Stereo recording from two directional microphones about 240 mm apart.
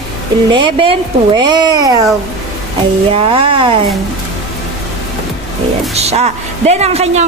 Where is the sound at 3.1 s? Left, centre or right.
Right.